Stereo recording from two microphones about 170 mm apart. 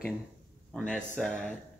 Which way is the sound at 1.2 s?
5° right (ahead or behind).